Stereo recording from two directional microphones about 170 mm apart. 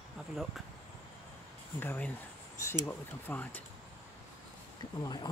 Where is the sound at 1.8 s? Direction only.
10° left (ahead or behind).